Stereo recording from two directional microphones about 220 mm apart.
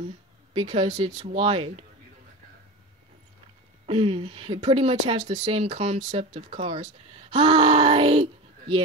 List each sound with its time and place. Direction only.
0.6 s speech: 25° right (ahead or behind)
3.8 s speech: 25° right (ahead or behind)